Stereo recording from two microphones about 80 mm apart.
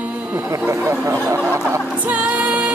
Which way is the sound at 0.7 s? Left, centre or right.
Right.